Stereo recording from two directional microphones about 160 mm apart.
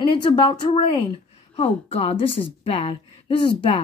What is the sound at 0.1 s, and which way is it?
A woman's voice, 30° left (ahead or behind).